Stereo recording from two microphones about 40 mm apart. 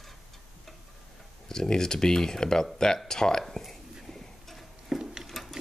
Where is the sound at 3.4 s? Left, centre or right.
Centre.